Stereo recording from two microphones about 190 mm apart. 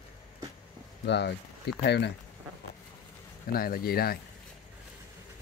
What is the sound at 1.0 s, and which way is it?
Speech, 65° left (ahead or behind).